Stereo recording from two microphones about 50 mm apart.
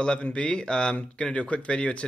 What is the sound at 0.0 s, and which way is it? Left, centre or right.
Speech, centre.